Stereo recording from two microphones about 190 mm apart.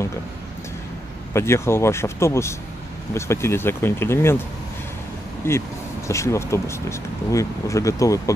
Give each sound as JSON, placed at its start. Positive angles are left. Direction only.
{"t": 1.3, "sound": "speech", "side_deg": 15}
{"t": 5.4, "sound": "speech", "side_deg": 10}